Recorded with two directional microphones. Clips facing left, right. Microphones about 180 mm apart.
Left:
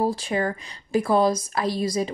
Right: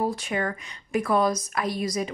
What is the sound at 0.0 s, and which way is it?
Speech, 30° left (ahead or behind).